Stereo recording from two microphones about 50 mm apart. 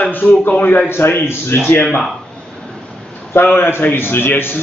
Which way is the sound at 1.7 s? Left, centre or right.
Left.